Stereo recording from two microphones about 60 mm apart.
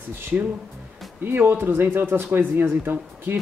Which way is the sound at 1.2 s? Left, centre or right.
Right.